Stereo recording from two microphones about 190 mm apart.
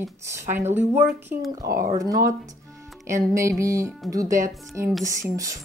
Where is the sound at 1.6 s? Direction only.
50° right (ahead or behind).